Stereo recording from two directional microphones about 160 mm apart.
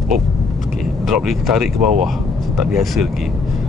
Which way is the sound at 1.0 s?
Centre (ahead or behind).